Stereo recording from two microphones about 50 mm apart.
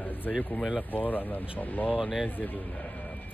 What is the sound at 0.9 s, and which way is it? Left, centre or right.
Speech, left.